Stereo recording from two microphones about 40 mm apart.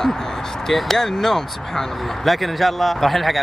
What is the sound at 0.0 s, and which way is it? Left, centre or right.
Speech, centre.